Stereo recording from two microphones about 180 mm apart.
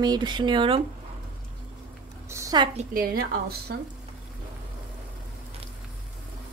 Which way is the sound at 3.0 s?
55° right (ahead or behind).